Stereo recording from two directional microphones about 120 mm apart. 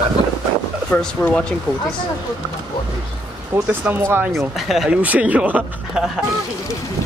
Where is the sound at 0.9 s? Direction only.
10° left (ahead or behind).